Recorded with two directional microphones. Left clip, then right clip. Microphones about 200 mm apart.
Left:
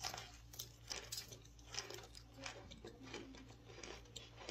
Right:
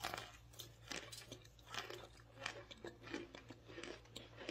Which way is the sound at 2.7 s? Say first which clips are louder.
Right 3 dB; 45° right (ahead or behind).